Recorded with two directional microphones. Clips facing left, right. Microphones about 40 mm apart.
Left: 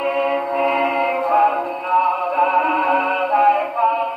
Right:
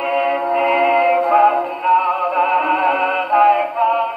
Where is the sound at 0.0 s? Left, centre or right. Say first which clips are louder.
Right 2 dB; right.